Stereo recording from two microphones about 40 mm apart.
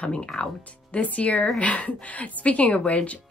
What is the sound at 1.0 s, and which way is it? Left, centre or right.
Speech, left.